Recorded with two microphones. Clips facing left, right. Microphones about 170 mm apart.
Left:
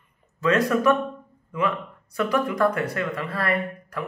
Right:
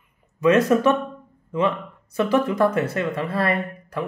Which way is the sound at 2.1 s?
25° right (ahead or behind).